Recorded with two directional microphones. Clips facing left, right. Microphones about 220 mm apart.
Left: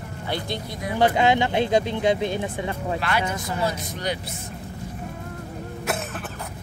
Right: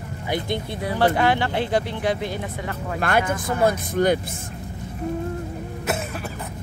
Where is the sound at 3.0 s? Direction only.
50° right (ahead or behind).